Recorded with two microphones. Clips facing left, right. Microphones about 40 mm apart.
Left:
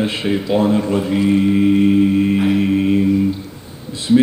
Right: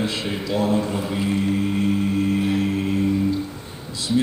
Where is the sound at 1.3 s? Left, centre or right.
Left.